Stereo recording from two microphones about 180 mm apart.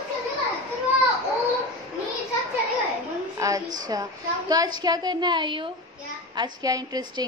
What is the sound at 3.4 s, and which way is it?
A woman's voice, 20° right (ahead or behind).